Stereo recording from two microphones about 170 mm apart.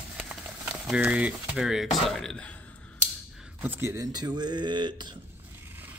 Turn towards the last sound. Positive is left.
turn(degrees=-10)  # may be behind; listen again after turning